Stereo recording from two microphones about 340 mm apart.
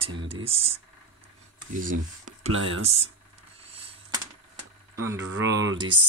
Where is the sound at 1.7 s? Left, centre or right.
Right.